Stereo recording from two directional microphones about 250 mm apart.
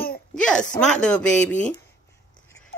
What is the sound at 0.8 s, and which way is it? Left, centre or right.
Speech, centre.